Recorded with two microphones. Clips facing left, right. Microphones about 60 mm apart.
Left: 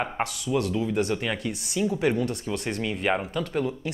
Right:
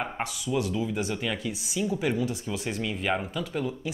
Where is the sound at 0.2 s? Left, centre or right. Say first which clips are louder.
Left 4 dB; centre.